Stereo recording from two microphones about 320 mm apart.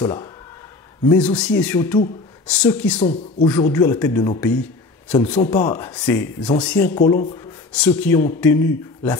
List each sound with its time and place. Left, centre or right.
0.0 s speech: centre
1.0 s speech: centre
3.0 s a man's voice: left
3.4 s a man's voice: centre